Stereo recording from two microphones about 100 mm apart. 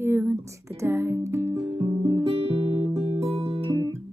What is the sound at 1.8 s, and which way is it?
Music, 65° right (ahead or behind).